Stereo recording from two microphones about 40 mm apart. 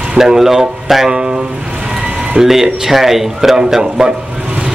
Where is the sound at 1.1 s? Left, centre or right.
Right.